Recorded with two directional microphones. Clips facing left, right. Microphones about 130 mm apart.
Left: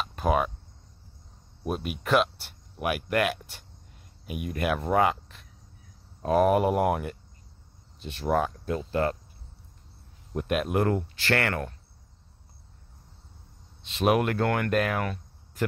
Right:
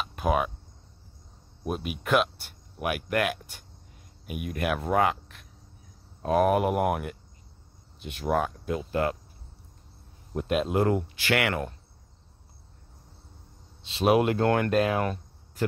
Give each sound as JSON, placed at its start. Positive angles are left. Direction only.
{"t": 0.0, "sound": "cricket", "side_deg": -5}
{"t": 1.8, "sound": "speech", "side_deg": 0}
{"t": 10.4, "sound": "speech", "side_deg": -25}
{"t": 13.9, "sound": "speech", "side_deg": -25}